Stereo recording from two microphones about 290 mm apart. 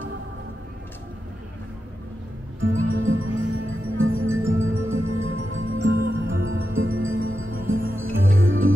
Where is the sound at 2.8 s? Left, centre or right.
Right.